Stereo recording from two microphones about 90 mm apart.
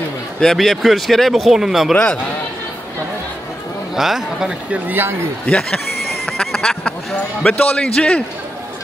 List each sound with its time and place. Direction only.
0.4 s speech: 5° left (ahead or behind)
3.9 s speech: 5° right (ahead or behind)
4.8 s a man's voice: 25° right (ahead or behind)
5.5 s speech: 5° left (ahead or behind)
6.3 s quack: 5° left (ahead or behind)
7.4 s speech: 15° left (ahead or behind)